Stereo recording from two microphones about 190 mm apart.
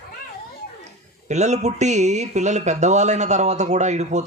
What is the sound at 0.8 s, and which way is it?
Speech, 35° right (ahead or behind).